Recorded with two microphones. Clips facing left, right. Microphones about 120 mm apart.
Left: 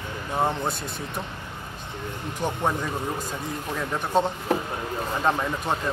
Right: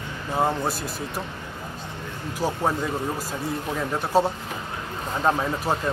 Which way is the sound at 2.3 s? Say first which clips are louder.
Right 2 dB; 5° right (ahead or behind).